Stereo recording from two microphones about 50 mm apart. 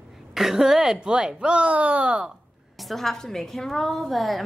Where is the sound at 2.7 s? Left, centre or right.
Centre.